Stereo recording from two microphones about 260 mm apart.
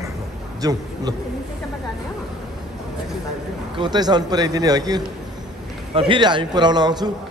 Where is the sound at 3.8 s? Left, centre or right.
Centre.